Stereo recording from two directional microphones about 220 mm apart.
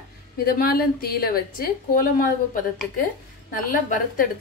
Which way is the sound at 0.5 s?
45° left (ahead or behind).